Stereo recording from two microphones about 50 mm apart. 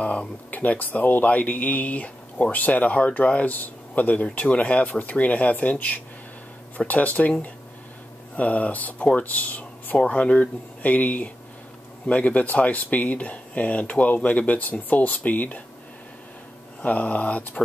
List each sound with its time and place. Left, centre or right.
0.0 s speech: left
16.8 s speech: left